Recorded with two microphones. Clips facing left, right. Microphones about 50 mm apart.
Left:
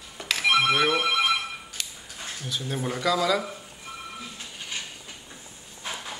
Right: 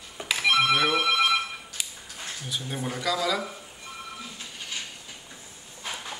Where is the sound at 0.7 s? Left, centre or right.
Centre.